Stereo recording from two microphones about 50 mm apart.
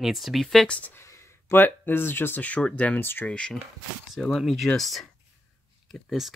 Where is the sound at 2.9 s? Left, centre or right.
Left.